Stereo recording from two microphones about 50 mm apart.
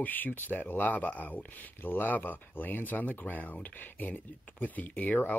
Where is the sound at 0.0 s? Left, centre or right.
Left.